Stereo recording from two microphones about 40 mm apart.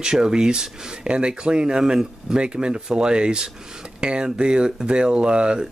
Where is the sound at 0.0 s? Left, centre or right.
Centre.